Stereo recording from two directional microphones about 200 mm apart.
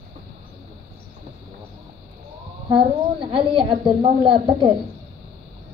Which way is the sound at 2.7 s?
25° right (ahead or behind).